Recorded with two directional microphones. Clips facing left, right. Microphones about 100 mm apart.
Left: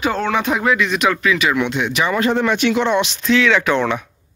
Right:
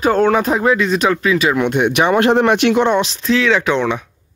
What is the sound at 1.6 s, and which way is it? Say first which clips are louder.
Speech: right 5 dB; 55° right (ahead or behind).